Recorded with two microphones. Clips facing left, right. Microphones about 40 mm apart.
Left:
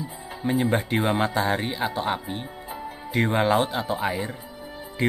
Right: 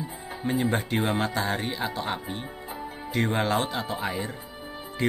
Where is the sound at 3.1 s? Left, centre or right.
Centre.